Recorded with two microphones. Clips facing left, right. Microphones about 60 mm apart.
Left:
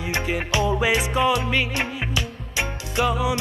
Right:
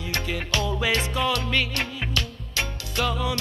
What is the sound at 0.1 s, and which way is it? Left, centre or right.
Music, centre.